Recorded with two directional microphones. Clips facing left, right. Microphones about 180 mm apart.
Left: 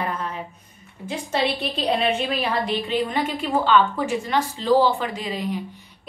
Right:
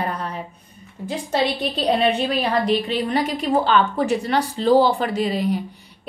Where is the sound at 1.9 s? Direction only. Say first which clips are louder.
Right 3 dB; 35° right (ahead or behind).